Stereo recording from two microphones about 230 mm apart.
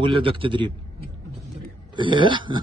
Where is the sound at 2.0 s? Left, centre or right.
Right.